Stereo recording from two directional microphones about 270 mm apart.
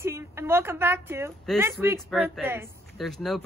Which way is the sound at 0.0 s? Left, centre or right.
Centre.